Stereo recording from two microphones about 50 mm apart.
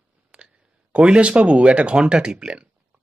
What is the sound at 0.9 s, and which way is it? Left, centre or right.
Speech, right.